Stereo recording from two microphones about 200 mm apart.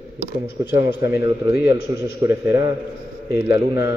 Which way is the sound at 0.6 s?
10° right (ahead or behind).